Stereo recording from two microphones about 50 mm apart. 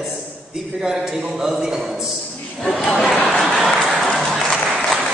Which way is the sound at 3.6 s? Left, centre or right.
Centre.